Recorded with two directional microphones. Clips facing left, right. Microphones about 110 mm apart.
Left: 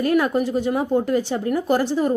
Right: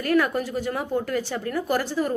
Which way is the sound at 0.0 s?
20° left (ahead or behind).